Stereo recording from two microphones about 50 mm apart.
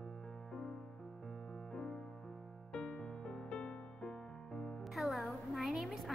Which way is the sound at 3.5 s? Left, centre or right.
Centre.